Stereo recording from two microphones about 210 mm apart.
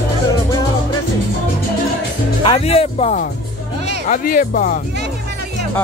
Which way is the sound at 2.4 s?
30° left (ahead or behind).